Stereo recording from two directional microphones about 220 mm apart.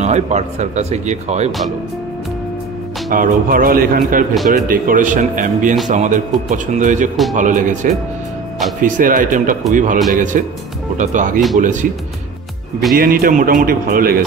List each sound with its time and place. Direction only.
0.0 s speech: 30° right (ahead or behind)
3.1 s speech: 40° right (ahead or behind)
12.9 s speech: 40° right (ahead or behind)